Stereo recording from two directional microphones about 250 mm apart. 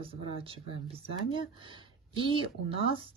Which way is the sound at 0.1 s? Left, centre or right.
Right.